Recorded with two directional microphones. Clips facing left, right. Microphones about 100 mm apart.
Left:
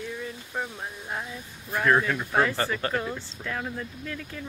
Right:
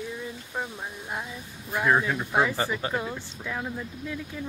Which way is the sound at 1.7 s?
15° right (ahead or behind).